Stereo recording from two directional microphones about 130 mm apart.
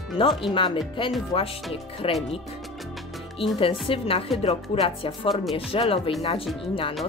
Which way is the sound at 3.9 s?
45° left (ahead or behind).